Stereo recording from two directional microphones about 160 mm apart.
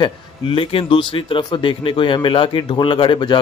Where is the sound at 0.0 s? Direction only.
30° left (ahead or behind).